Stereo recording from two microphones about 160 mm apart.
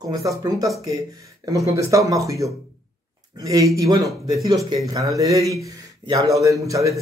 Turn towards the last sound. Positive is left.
turn(degrees=-20)  # may be behind; listen again after turning